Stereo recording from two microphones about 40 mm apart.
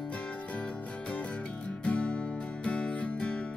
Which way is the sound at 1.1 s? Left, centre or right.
Left.